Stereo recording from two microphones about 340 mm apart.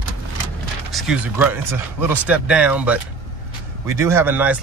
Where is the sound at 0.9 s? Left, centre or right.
Centre.